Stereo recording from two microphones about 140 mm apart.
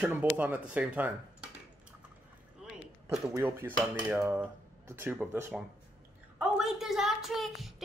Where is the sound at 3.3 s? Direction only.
15° right (ahead or behind).